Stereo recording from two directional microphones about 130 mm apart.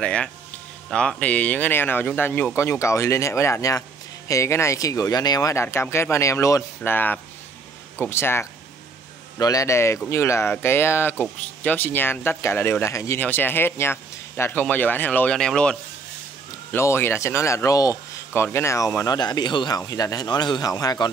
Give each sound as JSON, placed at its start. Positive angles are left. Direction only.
{"t": 0.0, "sound": "speech", "side_deg": 10}
{"t": 16.7, "sound": "speech", "side_deg": 20}
{"t": 19.0, "sound": "speech", "side_deg": 30}